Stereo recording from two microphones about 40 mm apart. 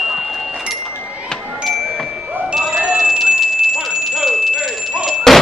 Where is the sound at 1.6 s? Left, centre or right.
Centre.